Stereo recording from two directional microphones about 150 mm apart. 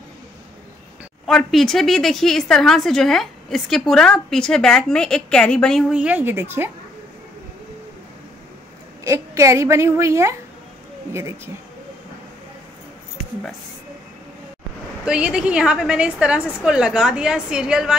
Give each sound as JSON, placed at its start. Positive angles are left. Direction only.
{"t": 1.2, "sound": "speech", "side_deg": 0}
{"t": 9.0, "sound": "a woman's voice", "side_deg": -20}
{"t": 15.0, "sound": "a woman's voice", "side_deg": -5}